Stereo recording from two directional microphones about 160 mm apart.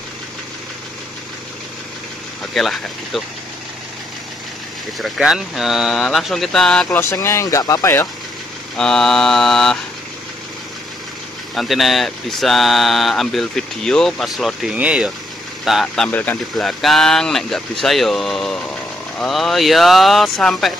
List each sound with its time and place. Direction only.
2.5 s speech: centre (ahead or behind)
4.9 s speech: centre (ahead or behind)
7.0 s speech: 15° left (ahead or behind)
8.7 s speech: 5° left (ahead or behind)
11.5 s speech: centre (ahead or behind)
16.1 s speech: 10° left (ahead or behind)